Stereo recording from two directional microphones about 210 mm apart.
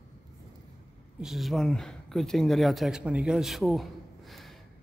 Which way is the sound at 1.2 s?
Centre (ahead or behind).